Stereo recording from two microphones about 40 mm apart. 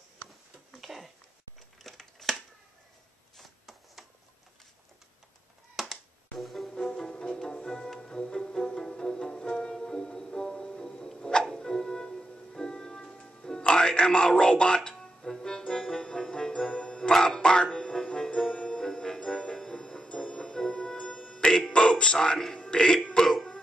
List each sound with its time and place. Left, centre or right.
0.7 s a sound: centre
1.8 s scissors: centre
3.3 s shuffling cards: centre
5.8 s music: centre
6.7 s music: centre
17.1 s music: centre
17.4 s music: left